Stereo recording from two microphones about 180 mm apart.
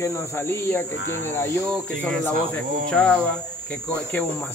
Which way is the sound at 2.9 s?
5° left (ahead or behind).